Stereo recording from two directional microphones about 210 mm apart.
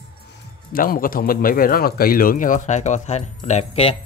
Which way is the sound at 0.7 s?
45° left (ahead or behind).